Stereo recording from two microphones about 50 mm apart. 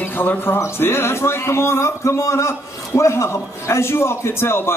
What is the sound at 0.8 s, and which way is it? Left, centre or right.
Speech, left.